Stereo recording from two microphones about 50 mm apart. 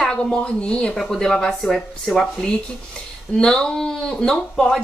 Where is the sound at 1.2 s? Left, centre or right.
Centre.